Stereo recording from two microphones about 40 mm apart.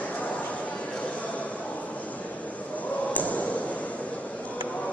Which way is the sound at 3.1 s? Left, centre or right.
Left.